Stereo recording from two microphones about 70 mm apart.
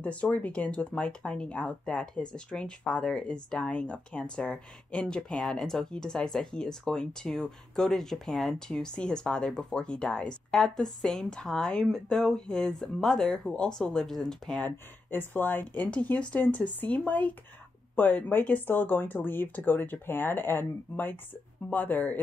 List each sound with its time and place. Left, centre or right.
0.0 s speech: centre
14.6 s speech: left